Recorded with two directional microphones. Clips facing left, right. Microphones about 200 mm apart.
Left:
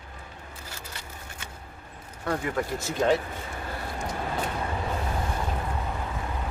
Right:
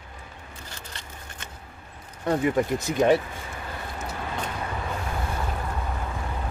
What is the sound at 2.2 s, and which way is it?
Speech, 20° right (ahead or behind).